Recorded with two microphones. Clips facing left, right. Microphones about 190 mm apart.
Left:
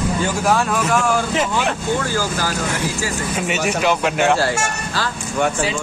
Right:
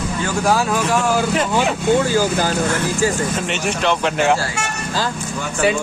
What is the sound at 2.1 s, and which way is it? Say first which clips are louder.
Speech: right 5 dB; 20° right (ahead or behind).